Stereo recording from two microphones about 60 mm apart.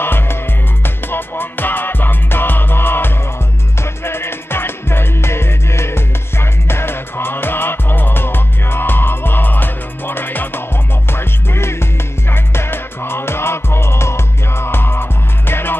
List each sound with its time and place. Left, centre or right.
0.0 s music: left